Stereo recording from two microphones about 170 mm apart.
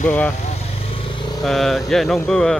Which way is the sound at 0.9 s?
35° left (ahead or behind).